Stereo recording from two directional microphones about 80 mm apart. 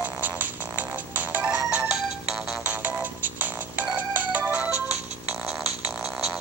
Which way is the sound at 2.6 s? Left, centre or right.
Right.